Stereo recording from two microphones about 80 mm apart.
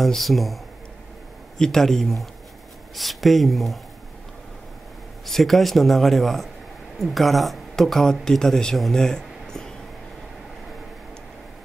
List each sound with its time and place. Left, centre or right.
0.0 s speech: centre
1.6 s speech: centre
5.2 s speech: centre